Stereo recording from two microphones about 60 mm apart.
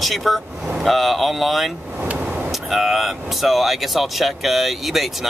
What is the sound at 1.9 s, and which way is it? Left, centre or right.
Vehicle, right.